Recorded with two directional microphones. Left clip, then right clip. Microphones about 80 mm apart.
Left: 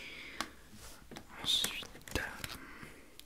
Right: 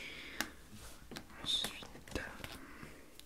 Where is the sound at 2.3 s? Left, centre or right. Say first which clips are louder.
Left 4 dB; left.